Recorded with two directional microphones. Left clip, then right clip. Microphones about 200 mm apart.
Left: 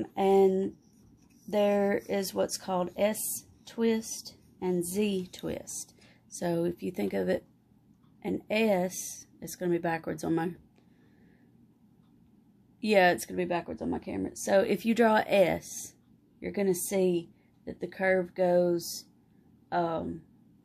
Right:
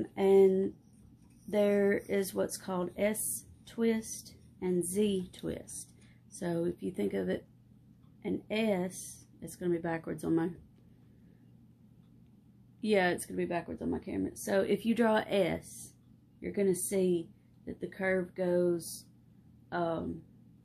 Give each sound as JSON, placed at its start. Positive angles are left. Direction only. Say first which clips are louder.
{"t": 0.0, "sound": "speech", "louder": "left 1 dB", "side_deg": 25}
{"t": 12.8, "sound": "speech", "louder": "left 6 dB", "side_deg": 40}